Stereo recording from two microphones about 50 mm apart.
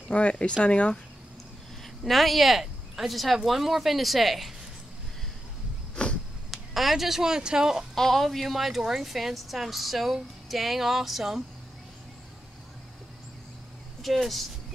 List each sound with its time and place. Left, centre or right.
0.1 s speech: left
2.0 s speech: centre
6.0 s a sound: left
6.5 s speech: centre
7.9 s speech: centre
14.0 s speech: centre